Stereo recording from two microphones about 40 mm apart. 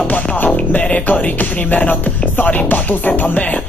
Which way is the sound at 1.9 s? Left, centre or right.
Left.